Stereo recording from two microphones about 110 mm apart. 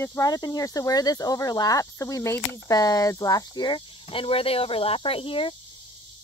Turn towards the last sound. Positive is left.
turn(degrees=55)  # may be behind; listen again after turning